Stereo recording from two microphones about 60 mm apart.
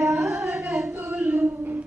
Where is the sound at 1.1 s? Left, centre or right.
Right.